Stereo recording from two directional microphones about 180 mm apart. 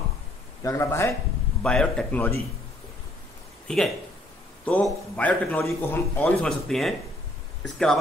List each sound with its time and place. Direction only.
0.6 s a man's voice: 15° left (ahead or behind)
1.6 s speech: 5° left (ahead or behind)
3.6 s a man's voice: 5° left (ahead or behind)